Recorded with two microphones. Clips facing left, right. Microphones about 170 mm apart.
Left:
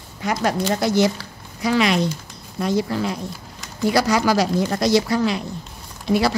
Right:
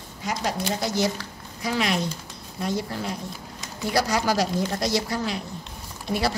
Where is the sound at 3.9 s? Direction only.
80° left.